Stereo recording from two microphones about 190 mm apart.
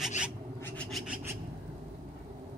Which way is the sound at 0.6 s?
5° left (ahead or behind).